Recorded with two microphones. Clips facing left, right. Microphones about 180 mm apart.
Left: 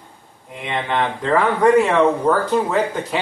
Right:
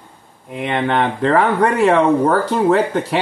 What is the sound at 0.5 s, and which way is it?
Speech, 60° right (ahead or behind).